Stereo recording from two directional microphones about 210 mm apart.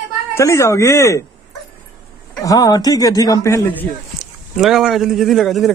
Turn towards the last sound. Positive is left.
turn(degrees=0)  # may be behind; listen again after turning